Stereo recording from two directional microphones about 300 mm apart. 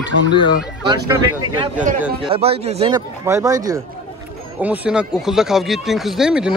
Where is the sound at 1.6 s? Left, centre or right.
Right.